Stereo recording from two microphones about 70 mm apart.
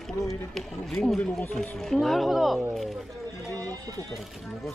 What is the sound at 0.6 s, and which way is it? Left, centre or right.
Speech, centre.